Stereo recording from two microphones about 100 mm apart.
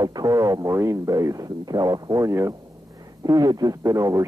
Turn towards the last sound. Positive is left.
turn(degrees=-35)  # may be behind; listen again after turning